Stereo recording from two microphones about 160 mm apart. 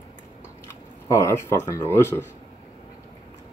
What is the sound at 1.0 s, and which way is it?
Speech, 15° left (ahead or behind).